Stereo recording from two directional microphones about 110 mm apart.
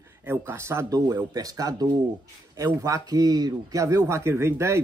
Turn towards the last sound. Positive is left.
turn(degrees=-25)  # may be behind; listen again after turning